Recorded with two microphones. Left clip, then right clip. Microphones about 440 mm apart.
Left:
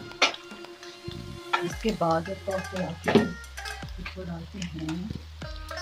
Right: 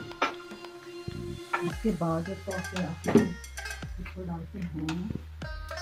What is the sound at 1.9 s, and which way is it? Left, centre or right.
Speech, left.